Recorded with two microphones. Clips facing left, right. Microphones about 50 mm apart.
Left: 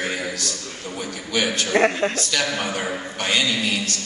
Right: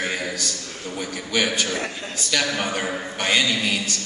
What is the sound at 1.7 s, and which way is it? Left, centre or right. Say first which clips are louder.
Speech: left 10 dB; left.